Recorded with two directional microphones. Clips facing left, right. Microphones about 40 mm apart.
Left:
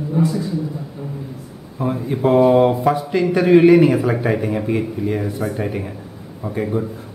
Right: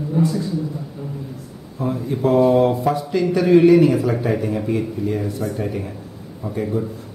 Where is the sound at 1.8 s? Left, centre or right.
Left.